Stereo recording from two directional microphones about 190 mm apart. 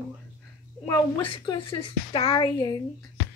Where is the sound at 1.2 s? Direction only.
25° left (ahead or behind).